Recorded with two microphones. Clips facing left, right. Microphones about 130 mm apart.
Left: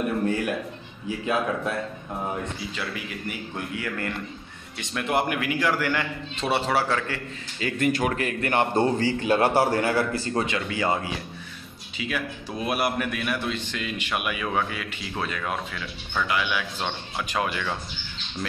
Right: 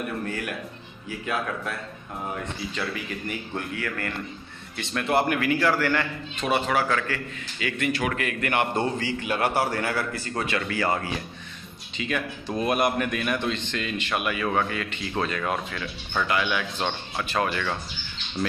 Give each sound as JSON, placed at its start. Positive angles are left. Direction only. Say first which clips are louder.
{"t": 0.3, "sound": "a man's voice", "louder": "left 6 dB", "side_deg": 25}
{"t": 2.7, "sound": "a man's voice", "louder": "right 2 dB", "side_deg": 5}
{"t": 3.7, "sound": "a man's voice", "louder": "left 3 dB", "side_deg": 20}
{"t": 6.4, "sound": "a man's voice", "louder": "even", "side_deg": 30}
{"t": 7.6, "sound": "a man's voice", "louder": "left 3 dB", "side_deg": 40}
{"t": 8.1, "sound": "a man's voice", "louder": "left 1 dB", "side_deg": 30}
{"t": 12.0, "sound": "a man's voice", "louder": "right 1 dB", "side_deg": 5}